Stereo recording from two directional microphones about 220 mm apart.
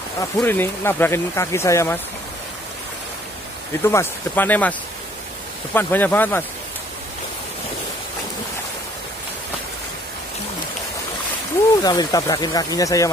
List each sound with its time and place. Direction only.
0.2 s speech: 10° left (ahead or behind)
3.8 s speech: 10° left (ahead or behind)
5.8 s speech: 10° left (ahead or behind)
11.8 s speech: 20° left (ahead or behind)